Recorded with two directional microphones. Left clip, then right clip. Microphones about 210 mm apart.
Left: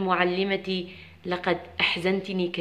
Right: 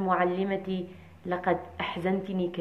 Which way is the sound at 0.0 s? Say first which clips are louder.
Left 2 dB; 30° left (ahead or behind).